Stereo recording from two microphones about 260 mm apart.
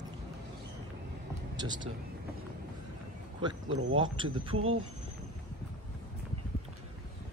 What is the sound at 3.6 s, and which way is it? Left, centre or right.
Speech, right.